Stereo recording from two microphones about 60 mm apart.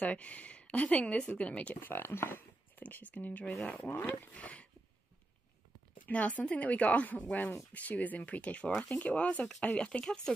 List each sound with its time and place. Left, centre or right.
0.0 s speech: left
1.8 s speech: left
2.8 s speech: left
3.7 s speech: left
4.3 s speech: left
6.0 s speech: left